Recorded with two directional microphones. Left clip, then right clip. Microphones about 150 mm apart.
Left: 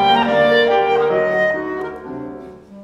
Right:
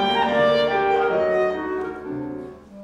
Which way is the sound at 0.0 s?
30° left (ahead or behind).